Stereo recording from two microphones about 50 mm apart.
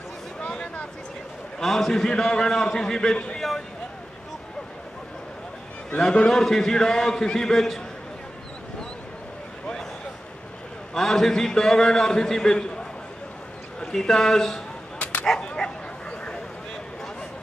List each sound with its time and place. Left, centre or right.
0.4 s a sound: left
1.6 s a man's voice: centre
5.9 s a man's voice: centre
11.0 s a man's voice: centre
13.9 s a man's voice: centre
15.4 s bow-wow: centre